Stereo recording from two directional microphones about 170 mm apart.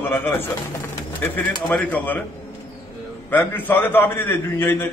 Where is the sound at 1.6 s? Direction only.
10° left (ahead or behind).